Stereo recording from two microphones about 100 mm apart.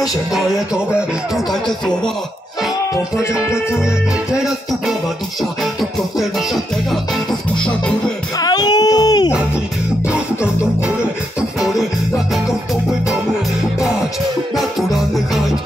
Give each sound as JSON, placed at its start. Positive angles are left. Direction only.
{"t": 4.3, "sound": "music", "side_deg": -5}
{"t": 8.4, "sound": "a sound", "side_deg": 45}
{"t": 14.6, "sound": "music", "side_deg": 0}